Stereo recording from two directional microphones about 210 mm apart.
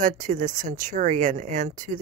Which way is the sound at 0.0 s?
35° right (ahead or behind).